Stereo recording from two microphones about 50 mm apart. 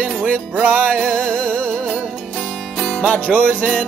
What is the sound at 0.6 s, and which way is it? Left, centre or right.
Music, right.